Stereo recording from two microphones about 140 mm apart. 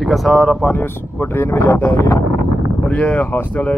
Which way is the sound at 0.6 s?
15° left (ahead or behind).